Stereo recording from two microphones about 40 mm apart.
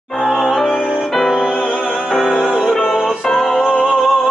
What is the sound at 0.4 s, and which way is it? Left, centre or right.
Music, centre.